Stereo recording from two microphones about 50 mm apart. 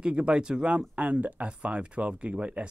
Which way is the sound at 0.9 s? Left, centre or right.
Right.